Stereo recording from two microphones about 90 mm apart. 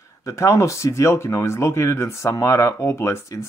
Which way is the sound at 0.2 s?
30° left (ahead or behind).